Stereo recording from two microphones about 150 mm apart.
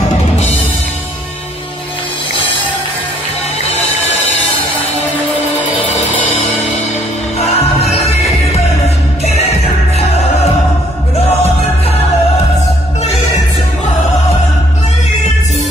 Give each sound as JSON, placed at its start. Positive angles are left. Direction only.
{"t": 5.3, "sound": "music", "side_deg": 40}
{"t": 7.3, "sound": "music", "side_deg": 45}